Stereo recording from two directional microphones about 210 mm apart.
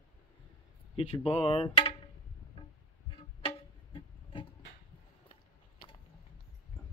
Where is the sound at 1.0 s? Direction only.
25° left (ahead or behind).